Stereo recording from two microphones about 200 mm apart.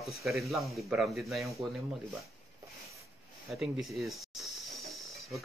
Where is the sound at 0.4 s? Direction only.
Centre (ahead or behind).